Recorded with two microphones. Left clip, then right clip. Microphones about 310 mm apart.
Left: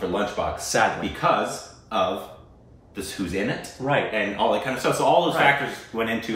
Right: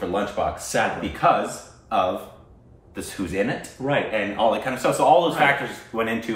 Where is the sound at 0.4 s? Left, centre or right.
Centre.